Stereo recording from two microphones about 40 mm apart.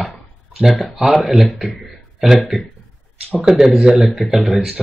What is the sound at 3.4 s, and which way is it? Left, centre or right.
Speech, centre.